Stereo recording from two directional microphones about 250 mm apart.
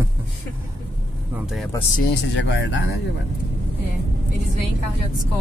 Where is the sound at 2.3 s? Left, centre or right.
Left.